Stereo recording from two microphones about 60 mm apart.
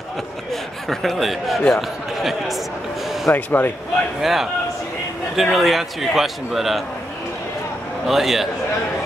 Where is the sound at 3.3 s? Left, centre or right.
Left.